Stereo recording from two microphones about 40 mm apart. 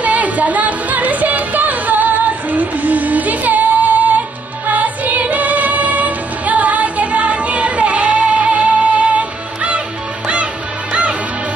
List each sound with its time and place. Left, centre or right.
0.0 s music: right